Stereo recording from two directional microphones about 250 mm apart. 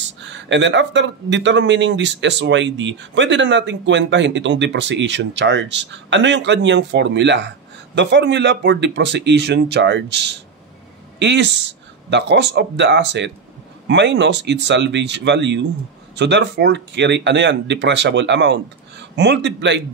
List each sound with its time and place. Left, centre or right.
0.2 s speech: right